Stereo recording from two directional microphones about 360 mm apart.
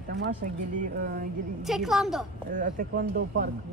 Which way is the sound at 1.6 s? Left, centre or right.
Centre.